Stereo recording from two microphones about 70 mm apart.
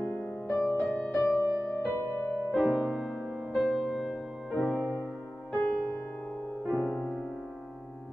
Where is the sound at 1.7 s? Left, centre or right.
Left.